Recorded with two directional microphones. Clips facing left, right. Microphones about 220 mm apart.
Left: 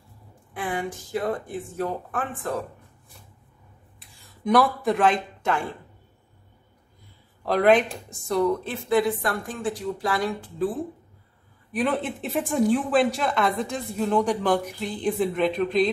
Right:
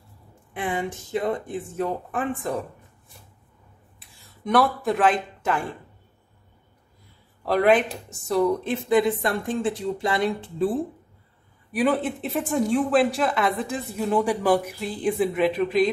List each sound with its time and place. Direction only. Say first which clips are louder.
0.5 s speech: right 1 dB; 20° right (ahead or behind)
4.2 s speech: left 1 dB; centre (ahead or behind)
7.4 s speech: even; centre (ahead or behind)
8.5 s speech: right 2 dB; 20° right (ahead or behind)
11.7 s speech: right 3 dB; centre (ahead or behind)